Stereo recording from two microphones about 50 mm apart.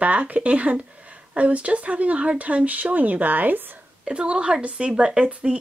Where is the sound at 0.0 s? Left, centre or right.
Right.